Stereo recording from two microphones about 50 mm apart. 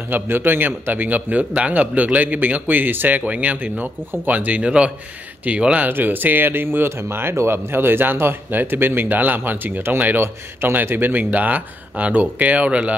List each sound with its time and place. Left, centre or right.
0.1 s speech: right
5.9 s speech: right